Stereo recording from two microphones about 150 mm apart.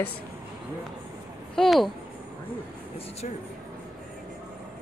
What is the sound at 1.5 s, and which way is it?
Speech, centre (ahead or behind).